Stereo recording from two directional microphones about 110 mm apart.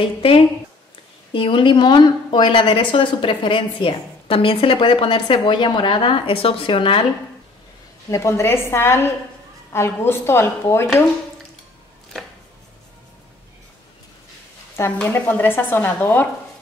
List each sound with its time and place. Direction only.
0.0 s a woman's voice: 55° left (ahead or behind)
8.1 s speech: 25° left (ahead or behind)
14.9 s speech: 15° left (ahead or behind)